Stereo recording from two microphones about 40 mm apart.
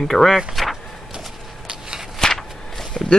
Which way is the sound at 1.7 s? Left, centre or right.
Centre.